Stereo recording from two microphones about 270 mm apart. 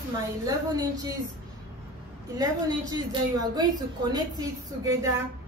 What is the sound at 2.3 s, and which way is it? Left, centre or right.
A woman's voice, centre.